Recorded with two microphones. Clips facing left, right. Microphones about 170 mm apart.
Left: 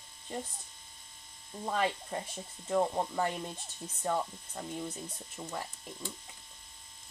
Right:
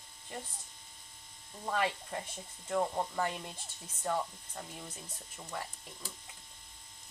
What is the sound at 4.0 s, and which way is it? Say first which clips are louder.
Speech: left 2 dB; 10° left (ahead or behind).